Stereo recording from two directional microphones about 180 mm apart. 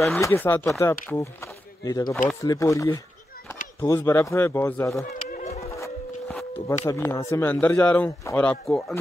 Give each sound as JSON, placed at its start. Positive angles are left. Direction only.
{"t": 0.0, "sound": "a man's voice", "side_deg": 15}
{"t": 5.1, "sound": "a sound", "side_deg": 40}
{"t": 6.9, "sound": "a man's voice", "side_deg": 15}